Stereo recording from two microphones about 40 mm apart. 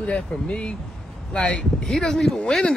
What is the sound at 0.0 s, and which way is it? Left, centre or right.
Speech, left.